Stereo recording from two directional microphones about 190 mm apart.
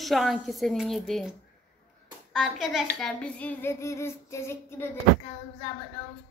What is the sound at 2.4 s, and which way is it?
Speech, centre (ahead or behind).